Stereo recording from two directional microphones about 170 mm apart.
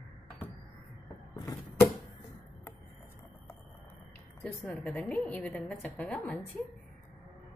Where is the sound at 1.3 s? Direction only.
20° left (ahead or behind).